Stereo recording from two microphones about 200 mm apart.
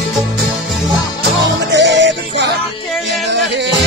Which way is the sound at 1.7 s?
60° right (ahead or behind).